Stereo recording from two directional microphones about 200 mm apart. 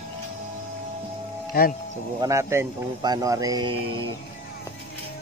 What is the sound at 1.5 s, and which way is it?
Speech, 45° left (ahead or behind).